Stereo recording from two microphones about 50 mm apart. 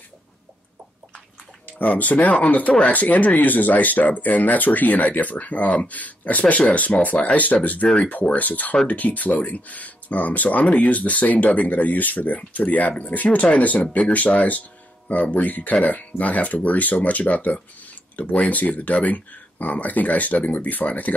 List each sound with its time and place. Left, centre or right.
1.7 s speech: left